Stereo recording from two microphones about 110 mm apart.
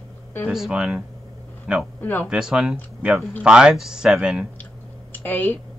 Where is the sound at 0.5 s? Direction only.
5° right (ahead or behind).